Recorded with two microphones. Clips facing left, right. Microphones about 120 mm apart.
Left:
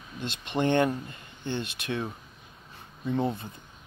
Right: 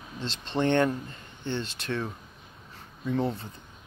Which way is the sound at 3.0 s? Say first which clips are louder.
Even; 20° left (ahead or behind).